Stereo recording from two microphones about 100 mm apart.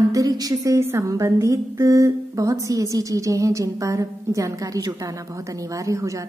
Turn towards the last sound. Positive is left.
turn(degrees=-30)  # may be behind; listen again after turning